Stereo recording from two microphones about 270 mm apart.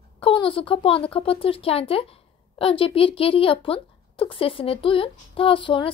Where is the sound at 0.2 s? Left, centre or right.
Centre.